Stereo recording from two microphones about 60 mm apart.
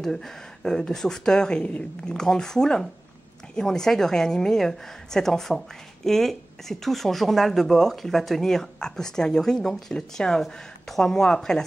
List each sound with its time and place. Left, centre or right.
0.0 s speech: centre